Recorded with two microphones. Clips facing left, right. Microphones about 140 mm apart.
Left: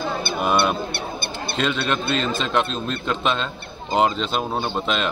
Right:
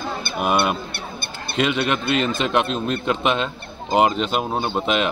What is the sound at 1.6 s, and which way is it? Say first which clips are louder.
A man's voice: right 3 dB; 15° right (ahead or behind).